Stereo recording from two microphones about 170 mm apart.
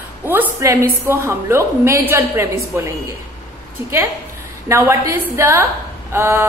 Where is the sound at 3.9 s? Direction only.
15° right (ahead or behind).